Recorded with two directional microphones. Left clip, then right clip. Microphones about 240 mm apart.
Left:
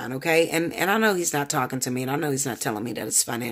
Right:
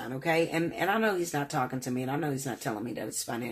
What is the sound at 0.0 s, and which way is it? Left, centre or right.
Speech, left.